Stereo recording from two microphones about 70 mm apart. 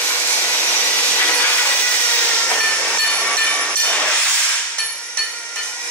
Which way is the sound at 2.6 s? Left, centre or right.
Centre.